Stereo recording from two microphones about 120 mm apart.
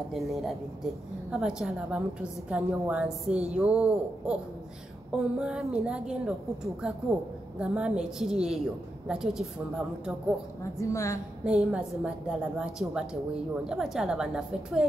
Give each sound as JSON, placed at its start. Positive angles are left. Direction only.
{"t": 0.1, "sound": "a woman's voice", "side_deg": 0}
{"t": 7.5, "sound": "a woman's voice", "side_deg": -10}
{"t": 10.6, "sound": "a woman's voice", "side_deg": 25}
{"t": 11.4, "sound": "a woman's voice", "side_deg": -10}